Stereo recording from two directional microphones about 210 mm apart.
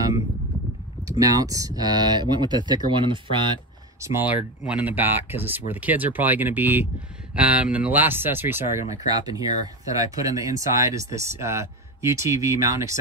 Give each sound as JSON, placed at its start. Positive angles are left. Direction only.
{"t": 1.0, "sound": "speech", "side_deg": -15}
{"t": 4.0, "sound": "speech", "side_deg": -10}